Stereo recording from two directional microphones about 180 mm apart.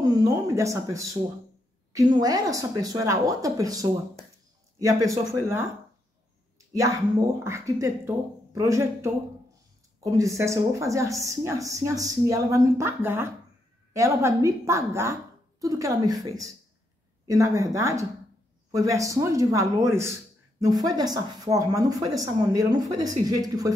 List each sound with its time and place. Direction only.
0.0 s a woman's voice: 20° right (ahead or behind)
7.4 s a woman's voice: 15° right (ahead or behind)
10.1 s a woman's voice: 15° right (ahead or behind)